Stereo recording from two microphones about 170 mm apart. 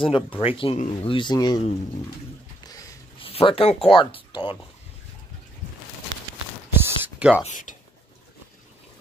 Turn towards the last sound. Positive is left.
turn(degrees=50)  # may be behind; listen again after turning